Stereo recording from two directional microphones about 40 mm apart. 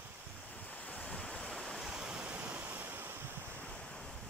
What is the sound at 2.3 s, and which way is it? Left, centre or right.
Ocean, right.